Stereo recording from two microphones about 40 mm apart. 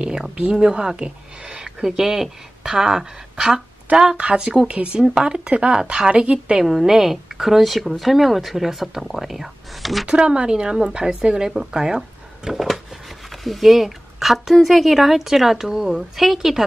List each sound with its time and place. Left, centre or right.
0.0 s speech: right
5.0 s speech: centre
6.6 s speech: centre
10.0 s speech: right; by 16.6 s centre